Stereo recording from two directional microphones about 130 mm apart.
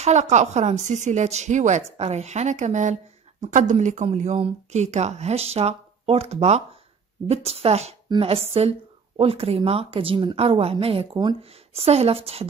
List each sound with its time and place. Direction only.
0.0 s a woman's voice: 60° right (ahead or behind)